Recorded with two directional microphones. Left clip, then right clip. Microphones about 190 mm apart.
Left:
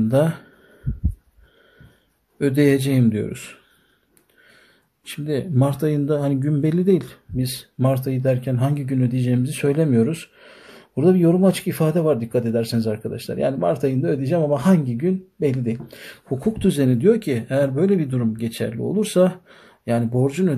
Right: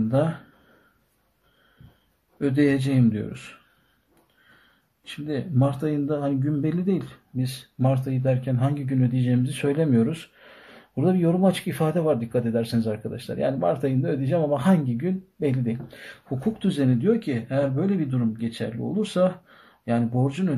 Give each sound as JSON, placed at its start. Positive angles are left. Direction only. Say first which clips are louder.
{"t": 0.1, "sound": "speech", "louder": "left 5 dB", "side_deg": 40}
{"t": 2.3, "sound": "speech", "louder": "left 4 dB", "side_deg": 40}
{"t": 5.0, "sound": "speech", "louder": "left 5 dB", "side_deg": 40}